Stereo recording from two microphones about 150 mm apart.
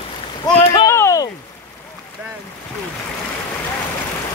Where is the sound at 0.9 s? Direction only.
20° left (ahead or behind).